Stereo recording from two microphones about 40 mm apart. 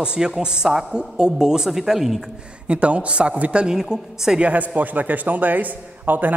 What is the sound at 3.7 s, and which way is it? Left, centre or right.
Speech, centre.